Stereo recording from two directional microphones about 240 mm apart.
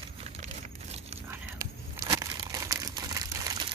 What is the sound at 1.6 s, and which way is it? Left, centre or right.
Crumpling, centre.